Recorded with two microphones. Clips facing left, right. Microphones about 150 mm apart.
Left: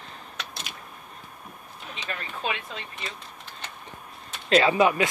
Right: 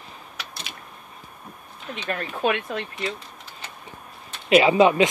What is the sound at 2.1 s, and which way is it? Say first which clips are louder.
Speech: right 8 dB; 55° right (ahead or behind).